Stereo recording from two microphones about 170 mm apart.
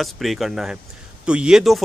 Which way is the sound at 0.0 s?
Centre (ahead or behind).